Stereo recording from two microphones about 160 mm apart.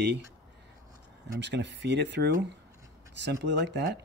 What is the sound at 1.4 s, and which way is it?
Speech, 90° right.